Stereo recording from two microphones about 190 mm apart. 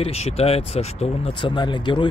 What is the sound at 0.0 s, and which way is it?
Speech, 30° left (ahead or behind).